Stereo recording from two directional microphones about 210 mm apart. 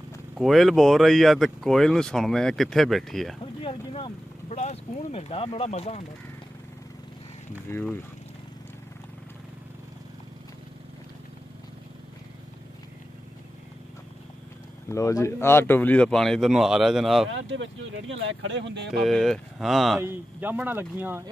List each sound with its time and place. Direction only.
0.4 s speech: centre (ahead or behind)
3.6 s speech: 25° left (ahead or behind)
7.7 s speech: 10° left (ahead or behind)
14.9 s speech: 15° left (ahead or behind); by 17.3 s centre (ahead or behind)
17.3 s speech: 65° right (ahead or behind)
18.9 s speech: centre (ahead or behind)